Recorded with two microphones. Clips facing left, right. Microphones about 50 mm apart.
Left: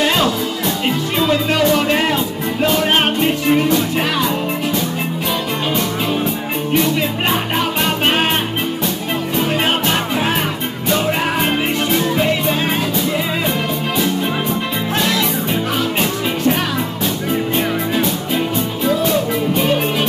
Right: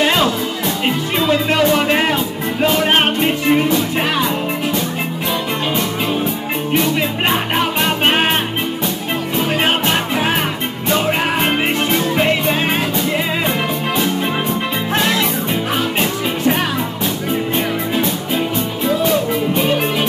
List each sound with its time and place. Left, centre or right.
0.0 s music: right
7.2 s music: right
9.5 s music: right
12.2 s music: right
14.9 s music: right